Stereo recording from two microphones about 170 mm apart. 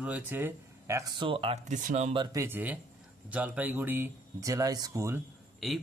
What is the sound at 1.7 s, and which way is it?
Speech, 45° right (ahead or behind).